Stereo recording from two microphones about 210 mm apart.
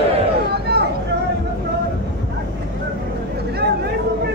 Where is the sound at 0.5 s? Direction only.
50° right (ahead or behind).